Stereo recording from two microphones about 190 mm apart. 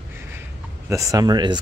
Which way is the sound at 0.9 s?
15° right (ahead or behind).